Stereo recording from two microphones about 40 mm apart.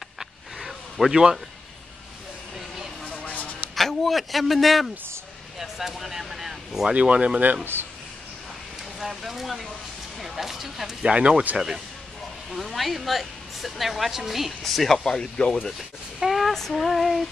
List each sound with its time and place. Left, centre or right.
0.2 s a sound: centre
1.1 s speech: centre
3.3 s a sound: left
3.7 s a man's voice: centre
6.9 s speech: right
7.7 s speech: right
9.0 s a woman's voice: centre
11.1 s speech: right
11.5 s speech: centre
12.5 s a woman's voice: centre
14.6 s a woman's voice: centre
15.0 s speech: centre
16.2 s a sound: centre
16.5 s a woman's voice: centre